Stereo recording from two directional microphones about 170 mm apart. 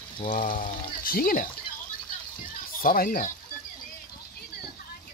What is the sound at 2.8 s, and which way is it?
Speech, 55° left (ahead or behind).